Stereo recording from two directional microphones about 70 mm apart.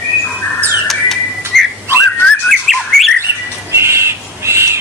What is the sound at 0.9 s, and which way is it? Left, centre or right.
Bird, centre.